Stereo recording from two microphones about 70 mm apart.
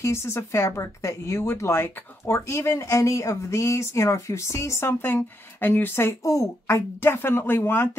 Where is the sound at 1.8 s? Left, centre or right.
Left.